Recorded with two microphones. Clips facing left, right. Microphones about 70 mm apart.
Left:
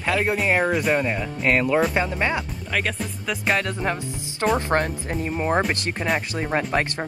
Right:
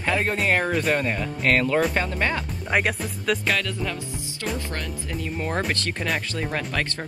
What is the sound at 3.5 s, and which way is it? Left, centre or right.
Speech, left.